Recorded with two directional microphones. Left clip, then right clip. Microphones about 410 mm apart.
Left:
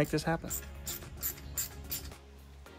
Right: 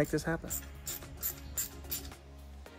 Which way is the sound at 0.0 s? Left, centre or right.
Centre.